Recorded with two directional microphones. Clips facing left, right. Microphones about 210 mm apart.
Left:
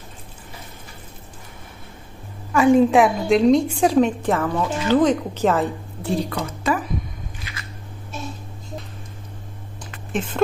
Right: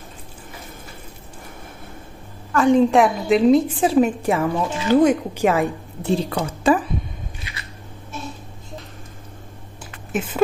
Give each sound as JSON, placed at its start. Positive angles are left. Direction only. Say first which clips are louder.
{"t": 2.5, "sound": "a woman's voice", "louder": "left 1 dB", "side_deg": 5}
{"t": 6.3, "sound": "a woman's voice", "louder": "right 5 dB", "side_deg": -30}
{"t": 10.1, "sound": "speech", "louder": "right 1 dB", "side_deg": -5}